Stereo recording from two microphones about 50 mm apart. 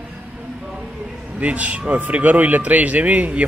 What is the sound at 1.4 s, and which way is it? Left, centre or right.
A man's voice, right.